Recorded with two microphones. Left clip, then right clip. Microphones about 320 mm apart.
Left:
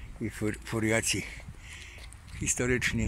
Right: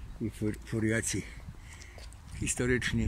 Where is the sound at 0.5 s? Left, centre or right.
Centre.